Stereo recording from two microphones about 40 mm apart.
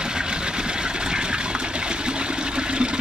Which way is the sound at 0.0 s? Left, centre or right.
Right.